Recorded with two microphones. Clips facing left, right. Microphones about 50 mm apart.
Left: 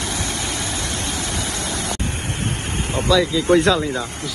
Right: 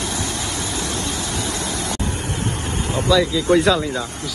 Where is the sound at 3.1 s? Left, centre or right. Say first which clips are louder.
Even; centre.